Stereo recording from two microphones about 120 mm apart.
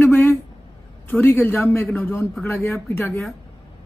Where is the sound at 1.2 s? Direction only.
20° left (ahead or behind).